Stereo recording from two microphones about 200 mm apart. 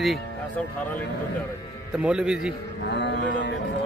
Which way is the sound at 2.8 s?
60° left (ahead or behind).